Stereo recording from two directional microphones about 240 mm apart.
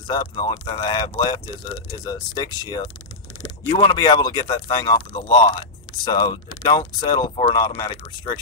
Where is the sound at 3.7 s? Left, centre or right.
Centre.